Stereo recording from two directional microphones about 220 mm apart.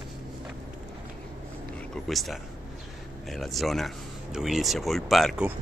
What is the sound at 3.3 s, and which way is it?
Speech, centre (ahead or behind).